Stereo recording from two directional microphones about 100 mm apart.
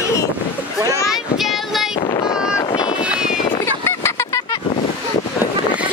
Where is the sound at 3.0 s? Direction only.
10° right (ahead or behind).